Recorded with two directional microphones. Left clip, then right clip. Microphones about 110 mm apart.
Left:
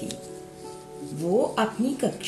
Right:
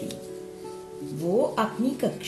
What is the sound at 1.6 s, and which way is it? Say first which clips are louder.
Speech: left 1 dB; 20° left (ahead or behind).